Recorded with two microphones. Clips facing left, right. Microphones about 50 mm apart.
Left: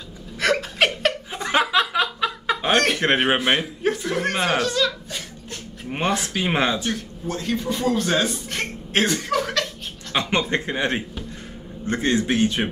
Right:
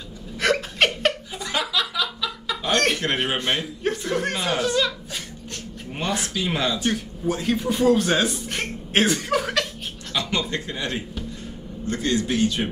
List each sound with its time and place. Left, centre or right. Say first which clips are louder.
0.4 s a sound: left 1 dB; centre
1.3 s snicker: left 6 dB; left
2.7 s chicken: left 1 dB; centre
3.0 s speech: left 5 dB; left
3.8 s chuckle: left 1 dB; centre
4.3 s speech: left 3 dB; centre
4.6 s speech: left 1 dB; centre
6.3 s speech: left 3 dB; left
6.9 s speech: right 3 dB; centre
10.1 s a man's voice: left 4 dB; left